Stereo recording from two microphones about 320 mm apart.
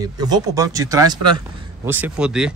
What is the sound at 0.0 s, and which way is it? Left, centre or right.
A man's voice, centre.